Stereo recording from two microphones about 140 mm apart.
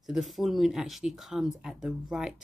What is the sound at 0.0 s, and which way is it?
Speech, centre (ahead or behind).